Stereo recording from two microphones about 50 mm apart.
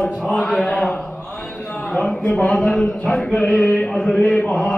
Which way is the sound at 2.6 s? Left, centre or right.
Centre.